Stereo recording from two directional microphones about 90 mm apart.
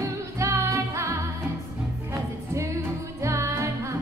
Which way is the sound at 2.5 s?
35° right (ahead or behind).